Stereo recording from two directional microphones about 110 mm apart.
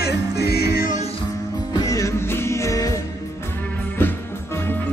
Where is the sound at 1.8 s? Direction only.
30° left (ahead or behind).